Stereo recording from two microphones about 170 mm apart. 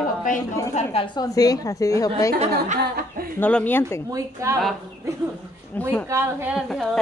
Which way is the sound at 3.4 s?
10° left (ahead or behind).